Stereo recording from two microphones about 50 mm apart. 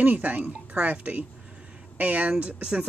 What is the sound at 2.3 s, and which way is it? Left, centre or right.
Speech, right.